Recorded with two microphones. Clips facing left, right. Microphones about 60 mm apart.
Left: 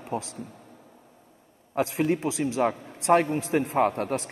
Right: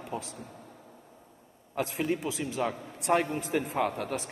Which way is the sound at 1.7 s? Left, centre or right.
Left.